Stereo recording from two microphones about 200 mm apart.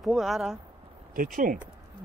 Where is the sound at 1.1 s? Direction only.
45° right (ahead or behind).